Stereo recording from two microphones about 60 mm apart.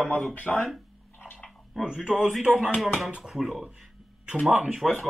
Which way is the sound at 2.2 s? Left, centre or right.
Right.